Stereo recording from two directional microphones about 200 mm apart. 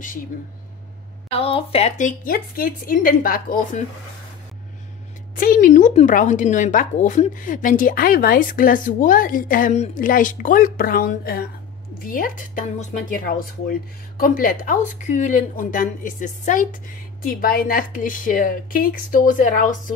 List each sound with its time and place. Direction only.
1.3 s a woman's voice: 30° left (ahead or behind); by 3.8 s 45° left (ahead or behind)
5.3 s a woman's voice: 45° left (ahead or behind)